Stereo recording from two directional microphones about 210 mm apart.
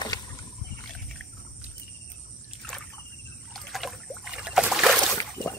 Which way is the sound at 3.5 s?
Centre (ahead or behind).